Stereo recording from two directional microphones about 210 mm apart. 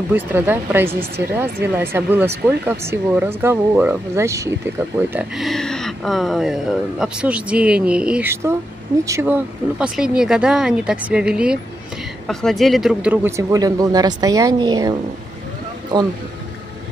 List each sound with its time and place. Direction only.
0.1 s speech: 10° right (ahead or behind)